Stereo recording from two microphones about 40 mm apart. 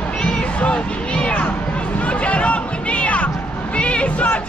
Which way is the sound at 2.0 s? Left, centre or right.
Left.